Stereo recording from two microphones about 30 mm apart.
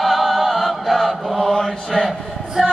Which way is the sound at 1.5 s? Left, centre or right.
Left.